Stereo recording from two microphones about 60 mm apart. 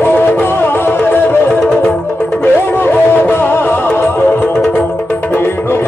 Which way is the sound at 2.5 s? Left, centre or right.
Left.